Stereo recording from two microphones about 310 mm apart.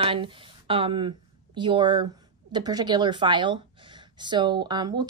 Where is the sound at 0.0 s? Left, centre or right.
Centre.